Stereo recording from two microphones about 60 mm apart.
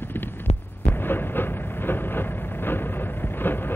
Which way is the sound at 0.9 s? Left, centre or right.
Left.